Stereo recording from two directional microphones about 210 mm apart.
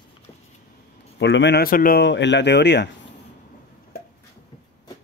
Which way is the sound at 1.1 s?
55° left (ahead or behind).